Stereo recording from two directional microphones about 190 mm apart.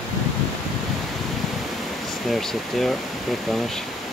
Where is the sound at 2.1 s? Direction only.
Centre (ahead or behind).